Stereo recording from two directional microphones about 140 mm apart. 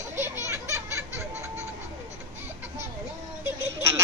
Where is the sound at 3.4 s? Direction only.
20° right (ahead or behind).